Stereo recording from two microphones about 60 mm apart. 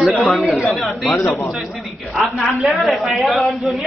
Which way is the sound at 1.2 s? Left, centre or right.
Left.